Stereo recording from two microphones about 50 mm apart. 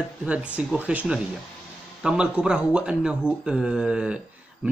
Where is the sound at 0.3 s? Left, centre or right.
Right.